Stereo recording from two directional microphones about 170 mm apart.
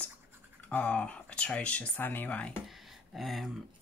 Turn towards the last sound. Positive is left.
turn(degrees=0)  # may be behind; listen again after turning